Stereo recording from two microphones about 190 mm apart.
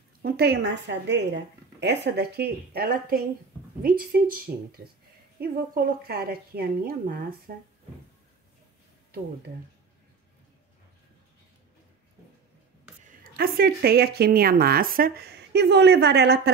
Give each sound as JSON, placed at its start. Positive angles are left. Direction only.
{"t": 0.2, "sound": "a woman's voice", "side_deg": -60}
{"t": 13.0, "sound": "speech", "side_deg": -50}